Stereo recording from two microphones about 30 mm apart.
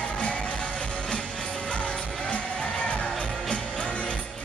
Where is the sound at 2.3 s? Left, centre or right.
Left.